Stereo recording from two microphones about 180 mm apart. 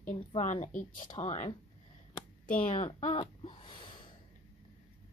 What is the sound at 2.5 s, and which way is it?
Speech, 50° left (ahead or behind).